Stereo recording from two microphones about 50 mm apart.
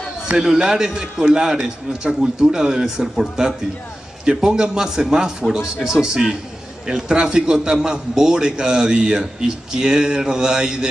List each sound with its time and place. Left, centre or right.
0.3 s a man's voice: centre